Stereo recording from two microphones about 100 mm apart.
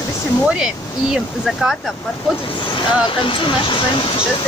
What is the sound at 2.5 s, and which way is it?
Speech, 50° left (ahead or behind).